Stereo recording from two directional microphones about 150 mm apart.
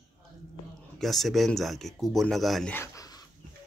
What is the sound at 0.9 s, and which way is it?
Speech, centre (ahead or behind).